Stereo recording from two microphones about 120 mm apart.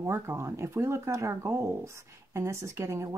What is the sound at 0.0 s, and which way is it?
Speech, 25° right (ahead or behind).